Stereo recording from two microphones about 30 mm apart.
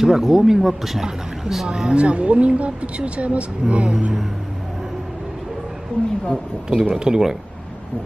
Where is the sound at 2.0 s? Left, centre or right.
Right.